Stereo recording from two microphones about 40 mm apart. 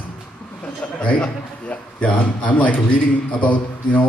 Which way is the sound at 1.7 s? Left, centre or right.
Left.